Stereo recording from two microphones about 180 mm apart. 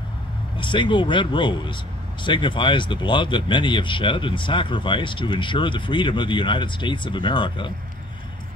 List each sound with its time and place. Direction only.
0.6 s speech: 25° left (ahead or behind)